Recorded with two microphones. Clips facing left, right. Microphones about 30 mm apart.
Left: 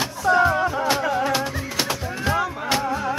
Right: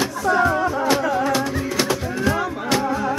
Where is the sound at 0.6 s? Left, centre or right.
Centre.